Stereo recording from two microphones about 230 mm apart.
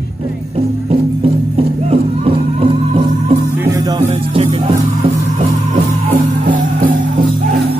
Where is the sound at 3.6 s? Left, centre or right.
Centre.